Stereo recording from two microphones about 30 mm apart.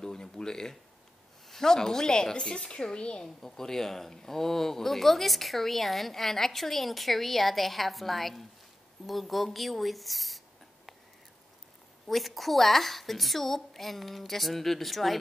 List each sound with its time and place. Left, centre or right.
0.0 s a sound: left
1.5 s a woman's voice: centre; by 3.3 s left
3.3 s speech: centre
12.1 s speech: centre